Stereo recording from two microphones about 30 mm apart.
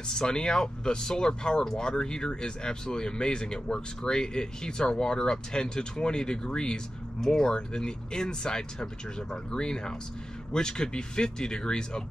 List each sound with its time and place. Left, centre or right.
0.3 s speech: left
7.2 s speech: centre
7.4 s speech: left